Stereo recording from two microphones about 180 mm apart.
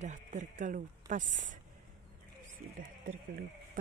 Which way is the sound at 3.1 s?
50° right (ahead or behind).